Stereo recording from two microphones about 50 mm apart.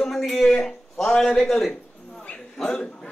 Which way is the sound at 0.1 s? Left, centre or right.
Centre.